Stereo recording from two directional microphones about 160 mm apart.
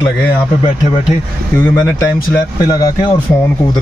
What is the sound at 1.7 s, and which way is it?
Speech, 15° left (ahead or behind).